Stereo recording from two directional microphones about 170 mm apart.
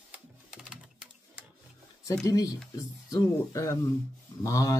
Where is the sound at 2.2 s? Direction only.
20° left (ahead or behind).